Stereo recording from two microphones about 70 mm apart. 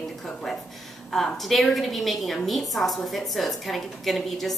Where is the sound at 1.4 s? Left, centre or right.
Centre.